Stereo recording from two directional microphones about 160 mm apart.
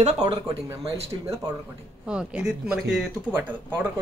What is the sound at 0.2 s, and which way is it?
Speech, 30° right (ahead or behind).